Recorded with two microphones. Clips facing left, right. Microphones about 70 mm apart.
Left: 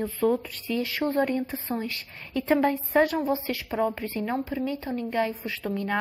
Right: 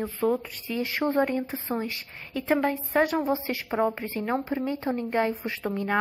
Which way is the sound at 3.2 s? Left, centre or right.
Right.